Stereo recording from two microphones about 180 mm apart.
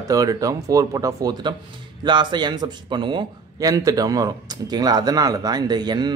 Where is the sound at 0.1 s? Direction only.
20° right (ahead or behind).